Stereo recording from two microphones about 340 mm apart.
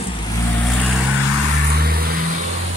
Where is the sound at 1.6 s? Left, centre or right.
Right.